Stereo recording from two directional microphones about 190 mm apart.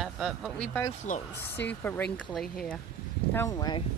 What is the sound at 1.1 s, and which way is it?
Speech, 40° left (ahead or behind).